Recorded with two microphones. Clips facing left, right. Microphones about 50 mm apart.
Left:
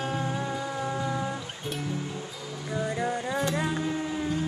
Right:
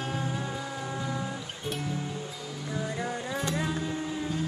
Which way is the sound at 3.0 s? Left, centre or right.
Centre.